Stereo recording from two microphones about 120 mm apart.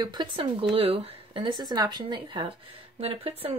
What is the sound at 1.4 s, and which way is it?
Speech, 35° right (ahead or behind).